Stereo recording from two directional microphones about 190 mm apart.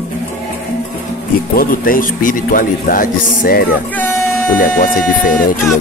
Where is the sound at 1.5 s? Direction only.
50° left (ahead or behind).